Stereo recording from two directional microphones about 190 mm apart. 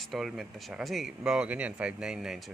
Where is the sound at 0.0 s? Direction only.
Centre (ahead or behind).